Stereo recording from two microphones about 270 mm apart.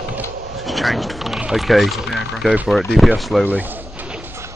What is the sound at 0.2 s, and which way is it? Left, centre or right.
Speech, centre.